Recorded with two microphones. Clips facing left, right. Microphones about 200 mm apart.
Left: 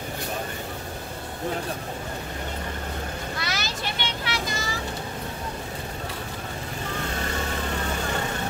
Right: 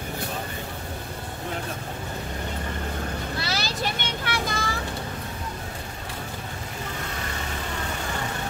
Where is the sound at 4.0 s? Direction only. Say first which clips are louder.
Right 1 dB; 50° right (ahead or behind).